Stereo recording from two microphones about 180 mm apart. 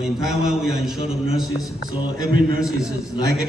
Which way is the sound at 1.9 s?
50° right (ahead or behind).